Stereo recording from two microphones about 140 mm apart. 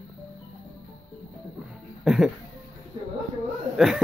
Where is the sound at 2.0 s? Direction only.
Centre (ahead or behind).